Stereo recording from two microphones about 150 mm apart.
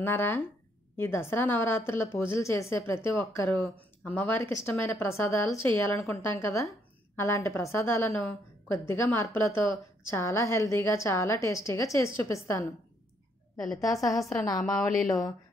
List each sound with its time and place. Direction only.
0.0 s a woman's voice: 15° left (ahead or behind)
13.7 s a woman's voice: 20° left (ahead or behind)
14.0 s a woman's voice: centre (ahead or behind)
14.3 s a woman's voice: 20° left (ahead or behind)